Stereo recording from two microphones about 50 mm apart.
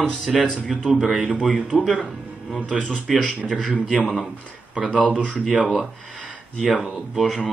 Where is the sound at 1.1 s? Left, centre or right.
Right.